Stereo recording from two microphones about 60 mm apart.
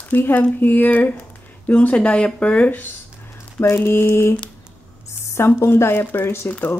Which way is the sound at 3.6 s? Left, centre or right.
Left.